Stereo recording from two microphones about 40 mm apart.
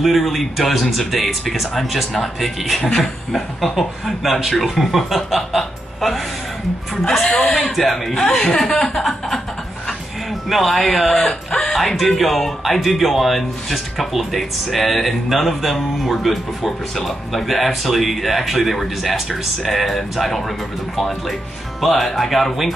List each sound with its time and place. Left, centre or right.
0.0 s speech: centre
10.5 s speech: centre
11.2 s a sound: centre
12.0 s speech: centre
12.8 s speech: centre
21.8 s speech: centre